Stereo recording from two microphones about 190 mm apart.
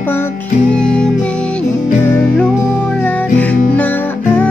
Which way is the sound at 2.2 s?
5° left (ahead or behind).